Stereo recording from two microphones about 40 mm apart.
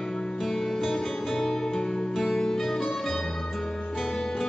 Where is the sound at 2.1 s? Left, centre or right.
Centre.